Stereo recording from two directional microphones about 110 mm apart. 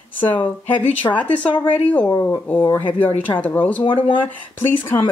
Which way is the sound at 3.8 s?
50° left (ahead or behind).